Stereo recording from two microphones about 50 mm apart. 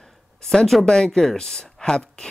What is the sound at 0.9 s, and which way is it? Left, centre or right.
Speech, centre.